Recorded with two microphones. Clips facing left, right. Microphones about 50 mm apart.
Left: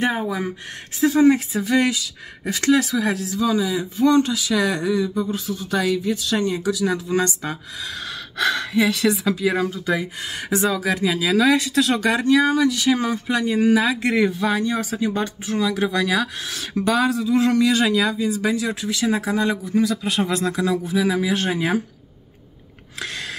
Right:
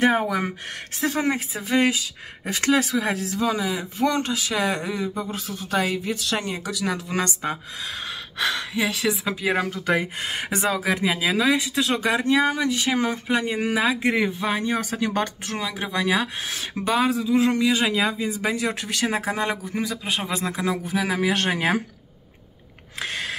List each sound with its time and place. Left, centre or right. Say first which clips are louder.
0.0 s speech: right 2 dB; right
1.0 s speech: left 8 dB; right
8.4 s speech: left 5 dB; centre
9.2 s speech: left 3 dB; right
11.3 s speech: left 4 dB; centre
12.4 s speech: left 4 dB; right
13.7 s speech: left 2 dB; centre
14.7 s speech: left 1 dB; right
15.0 s speech: left 1 dB; right
15.6 s speech: left 5 dB; centre
18.0 s speech: left 3 dB; right
22.9 s a sound: right 1 dB; right